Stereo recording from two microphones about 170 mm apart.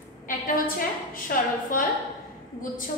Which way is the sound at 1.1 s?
55° left (ahead or behind).